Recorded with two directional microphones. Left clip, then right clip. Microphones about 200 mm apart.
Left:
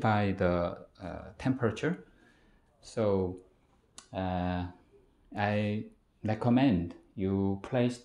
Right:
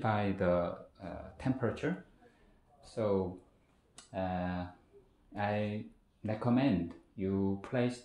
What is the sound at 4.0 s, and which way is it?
Speech, 45° left (ahead or behind).